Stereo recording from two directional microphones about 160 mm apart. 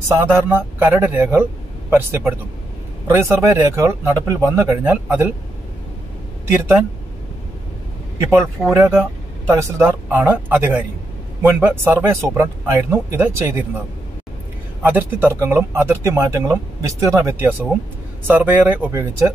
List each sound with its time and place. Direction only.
0.1 s speech: 15° right (ahead or behind)
8.3 s speech: 15° right (ahead or behind)
14.8 s speech: 10° right (ahead or behind)